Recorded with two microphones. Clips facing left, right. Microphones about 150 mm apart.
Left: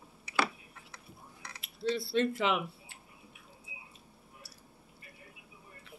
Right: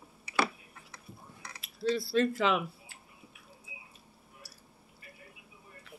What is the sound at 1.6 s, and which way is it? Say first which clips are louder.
Speech: right 2 dB; 25° left (ahead or behind).